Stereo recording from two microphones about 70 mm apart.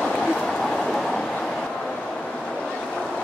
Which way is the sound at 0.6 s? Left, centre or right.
Centre.